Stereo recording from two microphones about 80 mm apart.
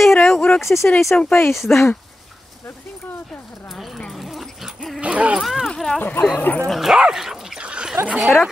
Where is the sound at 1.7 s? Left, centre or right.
Left.